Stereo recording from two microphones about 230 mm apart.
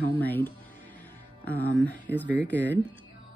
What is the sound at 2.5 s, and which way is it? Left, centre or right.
Speech, centre.